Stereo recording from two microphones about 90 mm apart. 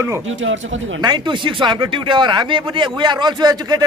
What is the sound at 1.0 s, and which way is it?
Speech, 55° right (ahead or behind).